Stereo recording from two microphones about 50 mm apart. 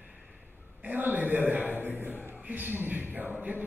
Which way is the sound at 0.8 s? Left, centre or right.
Right.